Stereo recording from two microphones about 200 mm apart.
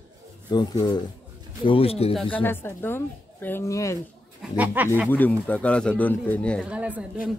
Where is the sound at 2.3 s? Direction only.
10° left (ahead or behind).